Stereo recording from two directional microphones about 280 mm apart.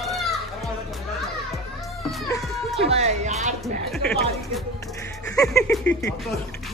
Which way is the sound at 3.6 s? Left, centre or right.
Centre.